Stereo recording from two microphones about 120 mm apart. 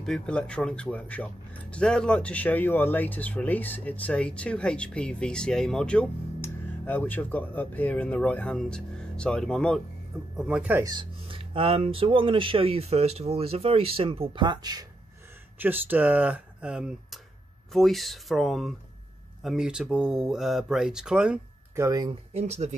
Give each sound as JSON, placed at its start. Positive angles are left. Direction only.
{"t": 0.0, "sound": "speech", "side_deg": 5}
{"t": 10.3, "sound": "speech", "side_deg": -5}
{"t": 10.8, "sound": "speech", "side_deg": -35}
{"t": 15.6, "sound": "speech", "side_deg": -15}
{"t": 21.7, "sound": "speech", "side_deg": -30}
{"t": 22.3, "sound": "speech", "side_deg": -65}